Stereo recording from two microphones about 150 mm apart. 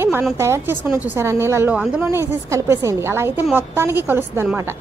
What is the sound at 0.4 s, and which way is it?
A woman's voice, 20° right (ahead or behind).